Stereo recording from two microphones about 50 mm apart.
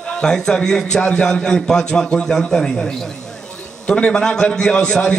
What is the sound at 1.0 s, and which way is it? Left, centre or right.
A man's voice, centre.